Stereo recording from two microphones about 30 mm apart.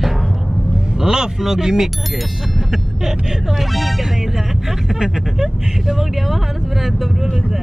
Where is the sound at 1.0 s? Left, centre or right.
Right.